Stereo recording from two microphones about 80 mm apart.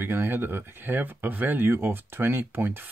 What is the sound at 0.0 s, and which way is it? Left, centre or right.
Speech, right.